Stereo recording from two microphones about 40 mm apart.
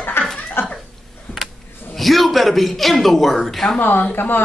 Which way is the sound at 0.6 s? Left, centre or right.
Left.